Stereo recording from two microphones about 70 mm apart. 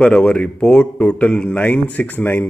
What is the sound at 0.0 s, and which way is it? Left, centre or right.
Speech, centre.